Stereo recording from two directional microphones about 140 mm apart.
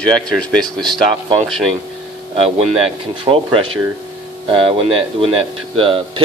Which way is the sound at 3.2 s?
40° right (ahead or behind).